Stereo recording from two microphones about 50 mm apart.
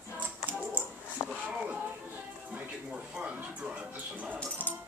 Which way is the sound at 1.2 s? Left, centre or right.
Left.